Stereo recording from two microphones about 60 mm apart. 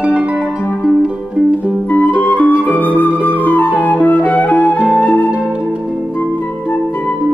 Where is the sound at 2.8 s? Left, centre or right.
Left.